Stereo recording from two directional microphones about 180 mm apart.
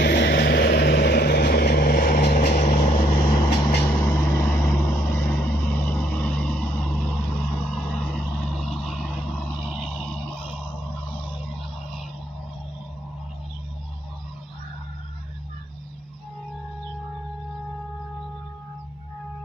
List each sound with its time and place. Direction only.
0.0 s vehicle: 70° left (ahead or behind); by 3.1 s 45° left (ahead or behind)
3.1 s vehicle: 25° left (ahead or behind)
3.8 s vehicle: 15° left (ahead or behind)
11.1 s vehicle: 30° left (ahead or behind)